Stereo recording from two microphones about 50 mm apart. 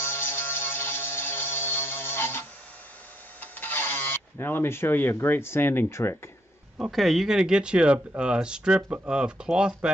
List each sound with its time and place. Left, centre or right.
0.0 s a sound: left
3.3 s honk: left
6.9 s speech: centre; by 9.8 s right